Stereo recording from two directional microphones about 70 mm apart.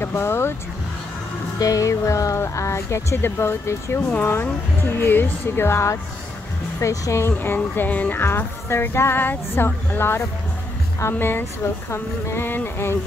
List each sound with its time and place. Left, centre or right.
0.0 s speech: left
1.6 s music: left
3.2 s speech: left
8.2 s speech: left